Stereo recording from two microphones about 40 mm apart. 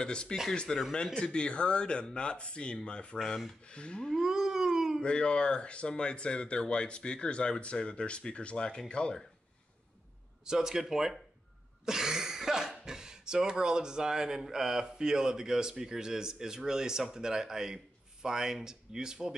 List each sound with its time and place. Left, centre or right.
0.0 s speech: left
4.2 s a sound: centre
5.0 s speech: left
10.4 s speech: centre